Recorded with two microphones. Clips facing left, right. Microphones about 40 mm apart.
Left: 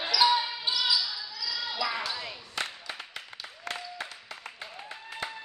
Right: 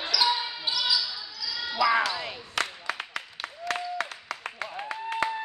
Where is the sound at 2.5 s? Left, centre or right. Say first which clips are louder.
Right 6 dB; right.